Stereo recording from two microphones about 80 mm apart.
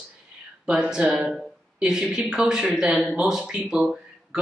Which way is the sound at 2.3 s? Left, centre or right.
Centre.